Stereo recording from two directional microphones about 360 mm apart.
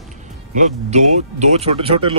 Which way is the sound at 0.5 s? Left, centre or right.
Centre.